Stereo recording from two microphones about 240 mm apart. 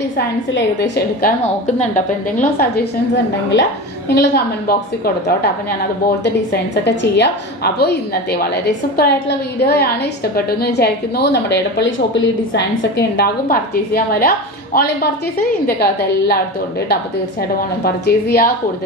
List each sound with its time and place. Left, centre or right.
0.6 s a woman's voice: left
2.4 s a woman's voice: left
4.1 s a woman's voice: left